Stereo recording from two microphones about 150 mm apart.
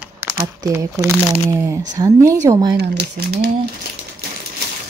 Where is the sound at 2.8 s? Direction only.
90° right.